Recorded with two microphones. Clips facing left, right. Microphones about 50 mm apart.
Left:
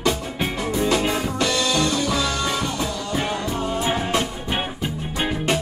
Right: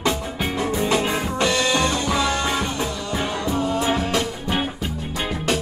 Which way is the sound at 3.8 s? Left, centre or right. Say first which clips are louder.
Right 1 dB; left.